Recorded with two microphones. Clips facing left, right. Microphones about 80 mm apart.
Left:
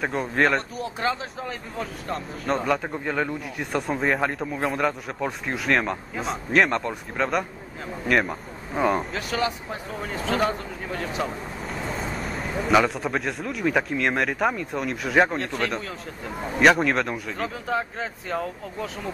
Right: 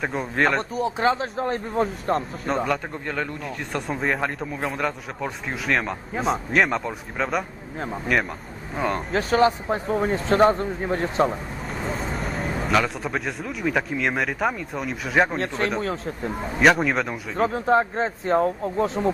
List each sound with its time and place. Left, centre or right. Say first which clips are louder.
0.0 s speech: even; centre
0.8 s speech: right 8 dB; right
1.1 s speech: right 7 dB; right
2.4 s speech: even; centre
9.1 s speech: right 7 dB; right
12.2 s speech: right 1 dB; centre
16.5 s speech: even; centre
17.5 s speech: right 9 dB; right